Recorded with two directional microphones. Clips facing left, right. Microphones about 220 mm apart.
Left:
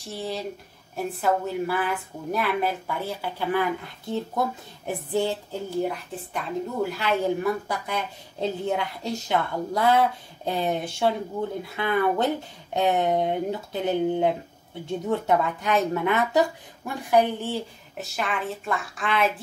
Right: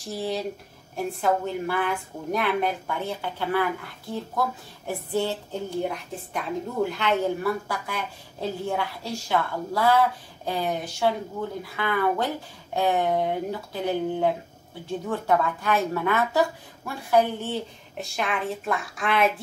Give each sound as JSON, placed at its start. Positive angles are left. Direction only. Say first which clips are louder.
{"t": 0.0, "sound": "a woman's voice", "louder": "right 2 dB", "side_deg": 0}
{"t": 4.8, "sound": "a woman's voice", "louder": "left 1 dB", "side_deg": 15}